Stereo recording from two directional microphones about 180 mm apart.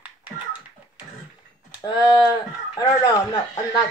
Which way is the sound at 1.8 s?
20° left (ahead or behind).